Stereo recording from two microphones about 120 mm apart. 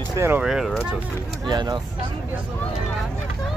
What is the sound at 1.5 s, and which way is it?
Speech, 35° right (ahead or behind).